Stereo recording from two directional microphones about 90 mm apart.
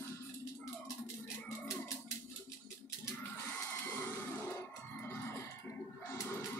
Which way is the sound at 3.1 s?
30° left (ahead or behind).